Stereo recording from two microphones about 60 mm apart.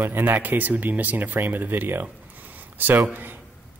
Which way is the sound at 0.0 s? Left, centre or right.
Right.